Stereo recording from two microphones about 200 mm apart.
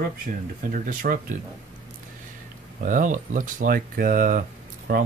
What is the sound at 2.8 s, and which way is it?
Speech, 40° right (ahead or behind).